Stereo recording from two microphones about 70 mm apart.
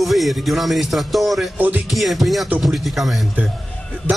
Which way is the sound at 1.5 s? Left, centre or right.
Right.